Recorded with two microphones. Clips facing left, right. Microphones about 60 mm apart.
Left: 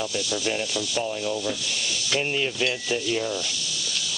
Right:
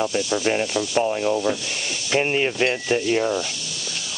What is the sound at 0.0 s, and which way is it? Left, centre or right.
Rub, right.